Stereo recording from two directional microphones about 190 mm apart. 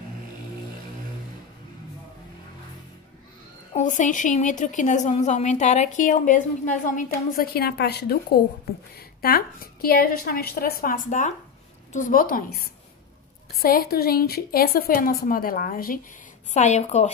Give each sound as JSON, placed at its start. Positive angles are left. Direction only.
{"t": 3.7, "sound": "a woman's voice", "side_deg": 40}